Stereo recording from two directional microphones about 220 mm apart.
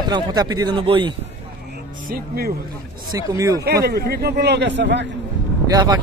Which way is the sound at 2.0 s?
45° right (ahead or behind).